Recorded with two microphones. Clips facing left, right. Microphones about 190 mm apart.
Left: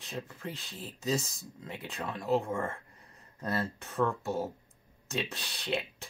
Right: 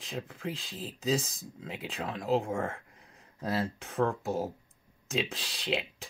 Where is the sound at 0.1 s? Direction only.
Centre (ahead or behind).